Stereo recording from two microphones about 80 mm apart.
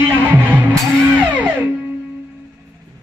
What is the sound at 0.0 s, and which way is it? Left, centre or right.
Music, right.